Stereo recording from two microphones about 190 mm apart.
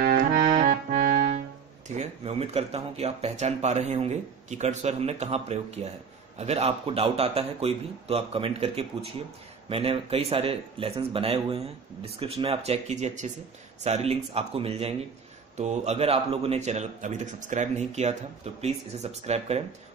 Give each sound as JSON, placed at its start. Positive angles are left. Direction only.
{"t": 0.0, "sound": "accordion", "side_deg": -50}
{"t": 2.0, "sound": "a man's voice", "side_deg": -35}